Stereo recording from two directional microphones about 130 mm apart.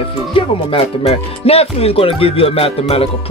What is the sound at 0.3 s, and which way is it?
Speech, 45° left (ahead or behind).